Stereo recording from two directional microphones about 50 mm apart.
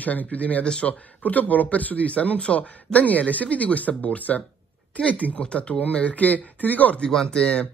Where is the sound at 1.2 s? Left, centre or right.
Left.